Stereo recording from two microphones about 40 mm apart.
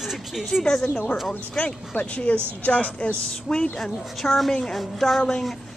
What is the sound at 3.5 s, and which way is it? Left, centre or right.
Speech, centre.